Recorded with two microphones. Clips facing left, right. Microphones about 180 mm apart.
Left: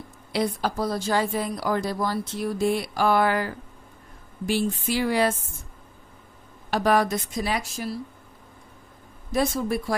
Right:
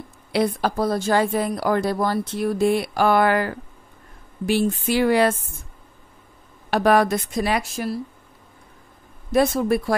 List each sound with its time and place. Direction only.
0.3 s speech: 60° right (ahead or behind)
6.7 s speech: 65° right (ahead or behind)
9.3 s speech: 60° right (ahead or behind)